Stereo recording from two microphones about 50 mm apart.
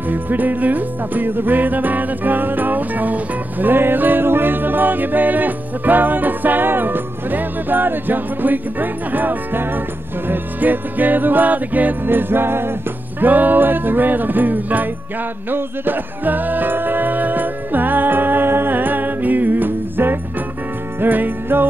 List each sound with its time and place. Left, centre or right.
0.1 s music: right
13.2 s music: right